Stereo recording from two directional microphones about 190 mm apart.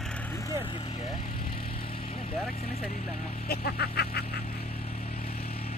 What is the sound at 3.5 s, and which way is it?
Vehicle, 55° left (ahead or behind).